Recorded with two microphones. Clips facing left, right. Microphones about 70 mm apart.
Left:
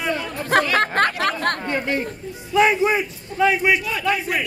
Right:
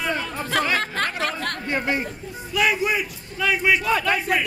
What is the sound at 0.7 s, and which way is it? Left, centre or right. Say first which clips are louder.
Chatter: left 6 dB; left.